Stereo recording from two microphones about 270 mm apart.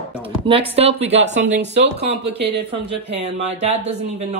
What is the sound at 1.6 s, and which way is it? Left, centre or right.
Speech, right.